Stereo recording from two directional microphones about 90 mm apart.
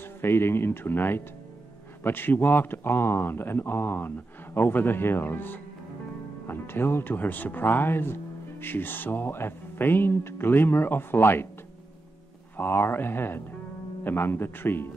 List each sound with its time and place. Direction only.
0.0 s speech: 25° left (ahead or behind)
12.5 s speech: 25° left (ahead or behind)